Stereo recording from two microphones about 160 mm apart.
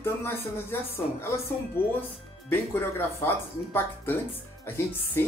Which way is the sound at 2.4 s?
15° left (ahead or behind).